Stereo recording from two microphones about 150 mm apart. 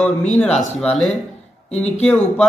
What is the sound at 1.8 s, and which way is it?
Speech, 5° left (ahead or behind).